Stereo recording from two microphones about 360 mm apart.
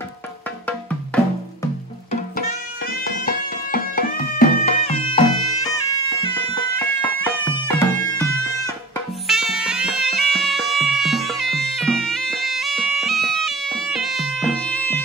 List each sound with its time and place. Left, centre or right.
0.7 s music: centre
2.0 s music: left; by 15.0 s centre